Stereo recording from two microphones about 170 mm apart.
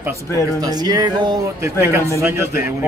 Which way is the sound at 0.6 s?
25° right (ahead or behind).